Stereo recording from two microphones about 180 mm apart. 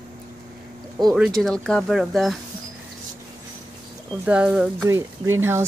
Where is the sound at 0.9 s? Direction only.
Centre (ahead or behind).